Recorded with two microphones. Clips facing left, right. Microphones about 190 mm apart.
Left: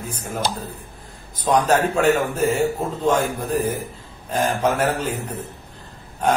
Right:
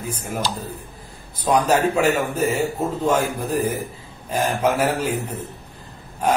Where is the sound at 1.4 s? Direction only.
10° right (ahead or behind).